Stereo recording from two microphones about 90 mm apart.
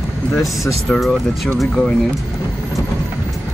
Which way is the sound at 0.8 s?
Centre (ahead or behind).